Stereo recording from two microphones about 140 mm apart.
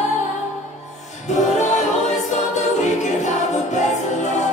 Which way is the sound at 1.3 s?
55° left (ahead or behind).